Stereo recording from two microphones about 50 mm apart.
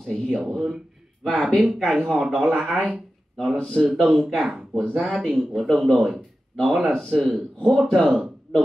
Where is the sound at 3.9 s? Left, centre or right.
Centre.